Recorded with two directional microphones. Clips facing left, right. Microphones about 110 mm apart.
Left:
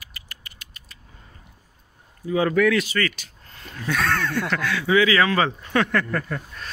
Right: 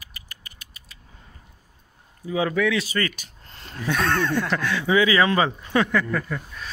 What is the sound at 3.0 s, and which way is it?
Speech, 25° right (ahead or behind).